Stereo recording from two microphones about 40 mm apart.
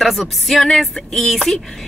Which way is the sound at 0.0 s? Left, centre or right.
Centre.